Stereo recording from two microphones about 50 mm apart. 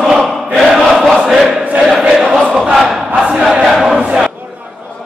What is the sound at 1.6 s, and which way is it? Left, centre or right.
Chant, right.